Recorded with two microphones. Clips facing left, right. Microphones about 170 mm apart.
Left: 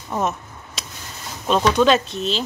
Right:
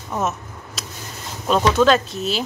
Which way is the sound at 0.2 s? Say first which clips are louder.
Even; centre (ahead or behind).